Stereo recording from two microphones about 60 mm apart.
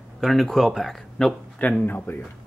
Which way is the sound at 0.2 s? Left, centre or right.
Centre.